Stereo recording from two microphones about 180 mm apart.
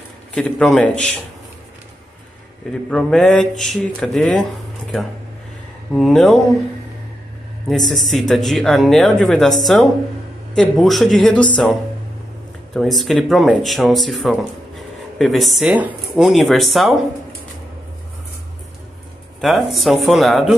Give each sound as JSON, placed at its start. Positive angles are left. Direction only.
{"t": 0.3, "sound": "speech", "side_deg": 0}
{"t": 2.9, "sound": "speech", "side_deg": 5}
{"t": 5.9, "sound": "speech", "side_deg": 0}
{"t": 7.6, "sound": "speech", "side_deg": 0}
{"t": 14.8, "sound": "a sound", "side_deg": 0}
{"t": 16.2, "sound": "speech", "side_deg": 0}
{"t": 19.4, "sound": "speech", "side_deg": 0}